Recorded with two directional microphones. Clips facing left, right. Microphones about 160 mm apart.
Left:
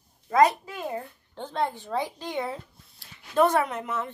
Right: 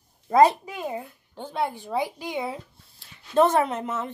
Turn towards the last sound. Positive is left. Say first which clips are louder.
# right 2 dB
turn(degrees=-25)  # may be behind; listen again after turning